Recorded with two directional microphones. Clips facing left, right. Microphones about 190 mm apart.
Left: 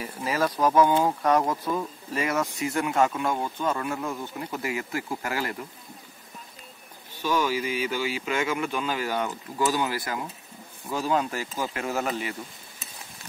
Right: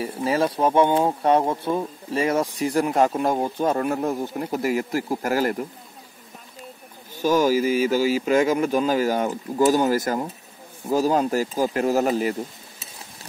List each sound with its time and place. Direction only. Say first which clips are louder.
0.0 s speech: right 5 dB; 30° right (ahead or behind)
7.2 s speech: right 7 dB; 40° right (ahead or behind)